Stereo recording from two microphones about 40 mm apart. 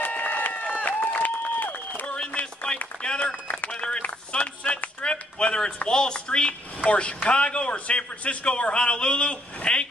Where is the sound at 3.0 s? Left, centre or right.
Left.